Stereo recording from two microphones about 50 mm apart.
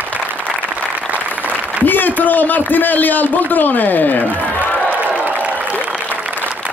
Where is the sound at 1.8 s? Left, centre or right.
Left.